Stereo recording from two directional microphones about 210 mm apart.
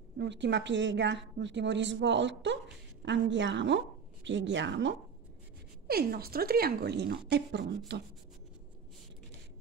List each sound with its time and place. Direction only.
0.2 s a woman's voice: 60° right (ahead or behind)
5.9 s speech: 45° right (ahead or behind)